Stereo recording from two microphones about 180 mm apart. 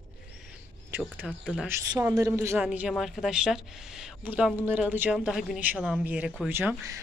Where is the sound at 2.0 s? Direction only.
15° right (ahead or behind).